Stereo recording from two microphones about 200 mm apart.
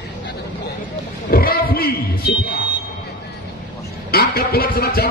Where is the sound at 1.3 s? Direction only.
50° left (ahead or behind).